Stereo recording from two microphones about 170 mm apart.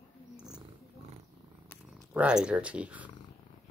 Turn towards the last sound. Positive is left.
turn(degrees=-10)  # may be behind; listen again after turning